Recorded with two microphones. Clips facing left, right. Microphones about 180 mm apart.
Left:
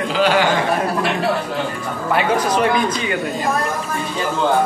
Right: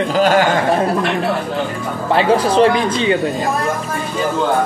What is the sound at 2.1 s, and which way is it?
Speech, 30° right (ahead or behind).